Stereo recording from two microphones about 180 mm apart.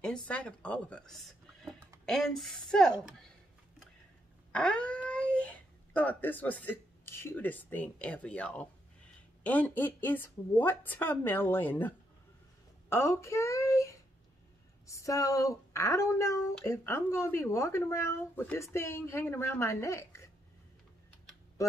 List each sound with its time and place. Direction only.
0.0 s a woman's voice: 5° left (ahead or behind)
4.5 s speech: 5° left (ahead or behind)
12.9 s speech: 15° left (ahead or behind)